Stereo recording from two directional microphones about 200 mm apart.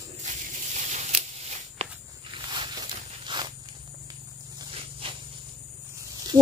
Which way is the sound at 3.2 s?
25° right (ahead or behind).